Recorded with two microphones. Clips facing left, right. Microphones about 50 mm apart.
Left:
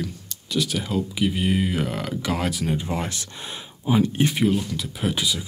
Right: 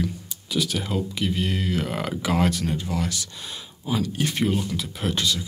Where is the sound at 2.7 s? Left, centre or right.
Left.